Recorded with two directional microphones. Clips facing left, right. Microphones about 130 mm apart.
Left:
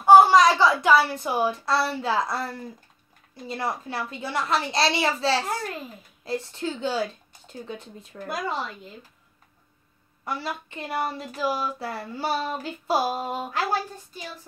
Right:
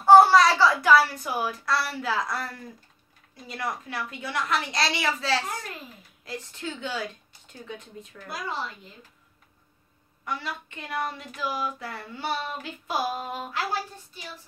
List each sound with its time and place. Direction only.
0.0 s a woman's voice: 15° left (ahead or behind); by 8.3 s 35° left (ahead or behind)
10.2 s speech: 35° left (ahead or behind)